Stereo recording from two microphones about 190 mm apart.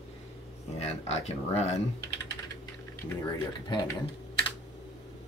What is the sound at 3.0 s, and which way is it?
Speech, 10° left (ahead or behind).